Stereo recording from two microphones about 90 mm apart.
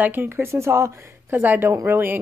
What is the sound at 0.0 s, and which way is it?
A woman's voice, 25° right (ahead or behind).